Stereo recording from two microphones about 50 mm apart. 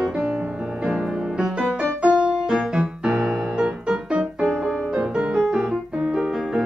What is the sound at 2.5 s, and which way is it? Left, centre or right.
Music, centre.